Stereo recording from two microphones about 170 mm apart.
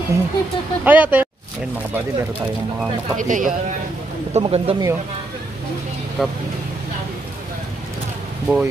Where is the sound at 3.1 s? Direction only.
50° right (ahead or behind).